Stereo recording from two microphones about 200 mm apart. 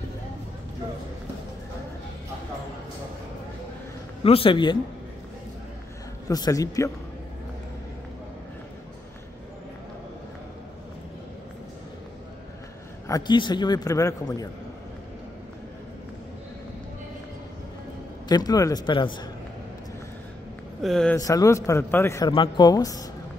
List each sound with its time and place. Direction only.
4.2 s a man's voice: 25° left (ahead or behind)
6.2 s a man's voice: 15° left (ahead or behind)
13.1 s a man's voice: 20° left (ahead or behind)
18.3 s a man's voice: 20° left (ahead or behind)
20.8 s speech: 5° left (ahead or behind)
21.2 s a man's voice: 15° left (ahead or behind)